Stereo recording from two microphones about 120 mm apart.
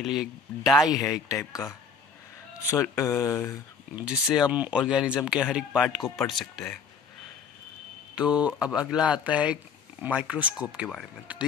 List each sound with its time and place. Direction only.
0.0 s speech: 5° right (ahead or behind)
1.3 s speech: 25° left (ahead or behind)
3.9 s speech: 10° right (ahead or behind); by 6.8 s 5° left (ahead or behind)
8.1 s speech: 10° right (ahead or behind)